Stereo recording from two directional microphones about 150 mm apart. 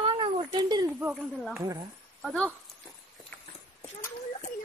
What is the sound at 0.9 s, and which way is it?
Speech, 10° right (ahead or behind).